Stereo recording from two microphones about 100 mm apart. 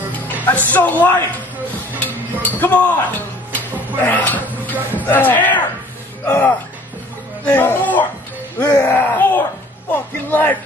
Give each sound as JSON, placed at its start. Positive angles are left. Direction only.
{"t": 0.6, "sound": "speech", "side_deg": 15}